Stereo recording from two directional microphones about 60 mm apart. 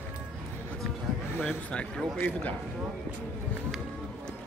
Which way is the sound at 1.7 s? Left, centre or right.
Centre.